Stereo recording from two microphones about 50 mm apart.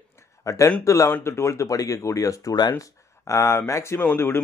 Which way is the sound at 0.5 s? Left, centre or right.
Left.